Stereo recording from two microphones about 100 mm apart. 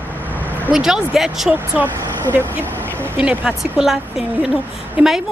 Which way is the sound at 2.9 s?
20° right (ahead or behind).